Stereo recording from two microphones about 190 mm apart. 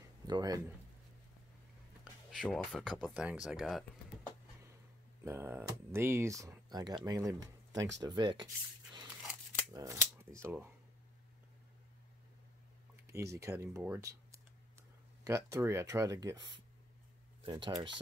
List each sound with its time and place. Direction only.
0.3 s speech: 20° right (ahead or behind)
2.3 s speech: 5° left (ahead or behind)
5.2 s speech: 15° right (ahead or behind)
9.7 s speech: 20° right (ahead or behind)
13.0 s a sound: 15° right (ahead or behind)
13.4 s speech: 15° right (ahead or behind)